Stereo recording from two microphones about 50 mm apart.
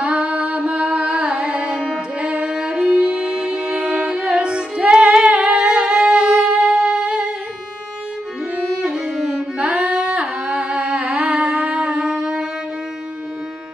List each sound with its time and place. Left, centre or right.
0.0 s music: right
8.5 s music: centre
9.6 s humming: right
12.1 s music: centre